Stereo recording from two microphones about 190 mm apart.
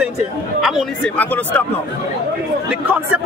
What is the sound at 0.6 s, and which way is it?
A man's voice, centre (ahead or behind).